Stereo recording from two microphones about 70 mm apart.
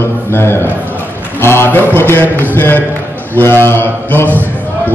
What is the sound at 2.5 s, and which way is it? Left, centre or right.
A man's voice, left.